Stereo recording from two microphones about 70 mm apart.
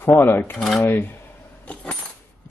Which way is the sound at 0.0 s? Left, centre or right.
Left.